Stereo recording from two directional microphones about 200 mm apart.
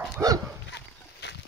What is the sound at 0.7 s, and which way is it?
Horse, 60° left (ahead or behind).